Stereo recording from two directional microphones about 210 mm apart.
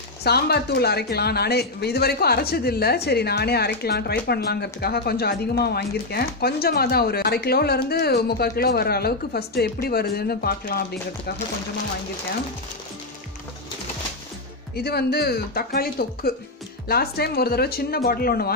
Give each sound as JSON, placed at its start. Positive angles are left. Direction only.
{"t": 0.2, "sound": "speech", "side_deg": 50}
{"t": 14.8, "sound": "speech", "side_deg": 50}